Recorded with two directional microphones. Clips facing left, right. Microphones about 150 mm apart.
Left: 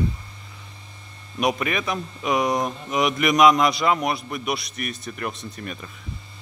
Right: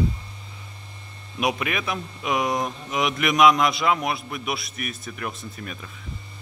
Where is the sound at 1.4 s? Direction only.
Centre (ahead or behind).